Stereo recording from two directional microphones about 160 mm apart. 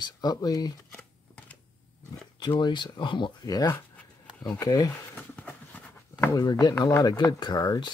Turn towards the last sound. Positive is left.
turn(degrees=20)  # may be behind; listen again after turning